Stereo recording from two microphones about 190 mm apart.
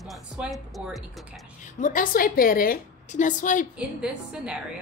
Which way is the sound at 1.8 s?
45° left (ahead or behind).